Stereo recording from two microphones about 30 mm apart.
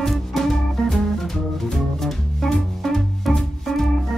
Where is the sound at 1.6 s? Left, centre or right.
Centre.